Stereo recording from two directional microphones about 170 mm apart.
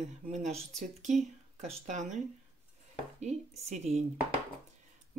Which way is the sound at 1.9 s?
45° right (ahead or behind).